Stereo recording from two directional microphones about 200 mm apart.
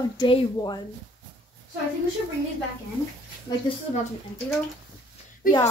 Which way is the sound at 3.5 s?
20° left (ahead or behind).